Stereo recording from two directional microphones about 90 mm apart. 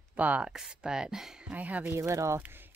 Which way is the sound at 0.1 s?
15° right (ahead or behind).